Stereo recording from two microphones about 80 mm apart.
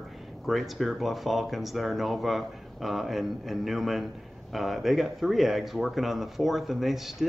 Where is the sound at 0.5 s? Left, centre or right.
Centre.